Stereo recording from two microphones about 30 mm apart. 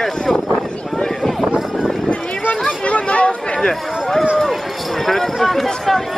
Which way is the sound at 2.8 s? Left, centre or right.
Left.